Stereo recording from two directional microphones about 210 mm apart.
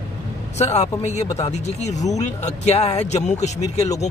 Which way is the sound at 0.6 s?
30° left (ahead or behind).